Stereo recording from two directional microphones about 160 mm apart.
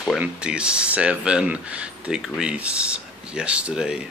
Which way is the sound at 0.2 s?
5° right (ahead or behind).